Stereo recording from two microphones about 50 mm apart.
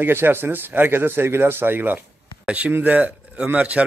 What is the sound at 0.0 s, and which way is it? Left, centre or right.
Speech, right.